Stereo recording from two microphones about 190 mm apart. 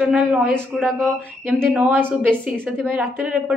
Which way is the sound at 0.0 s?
5° right (ahead or behind).